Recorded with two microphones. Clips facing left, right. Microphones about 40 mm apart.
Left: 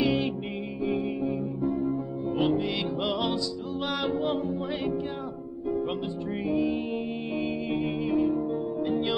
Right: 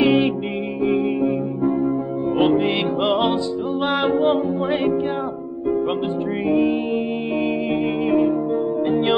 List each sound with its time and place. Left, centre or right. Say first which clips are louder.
0.0 s music: right 9 dB; right
6.5 s music: right 8 dB; right